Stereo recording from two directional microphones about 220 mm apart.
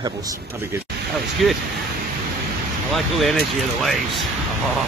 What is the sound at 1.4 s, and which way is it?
Speech, centre (ahead or behind).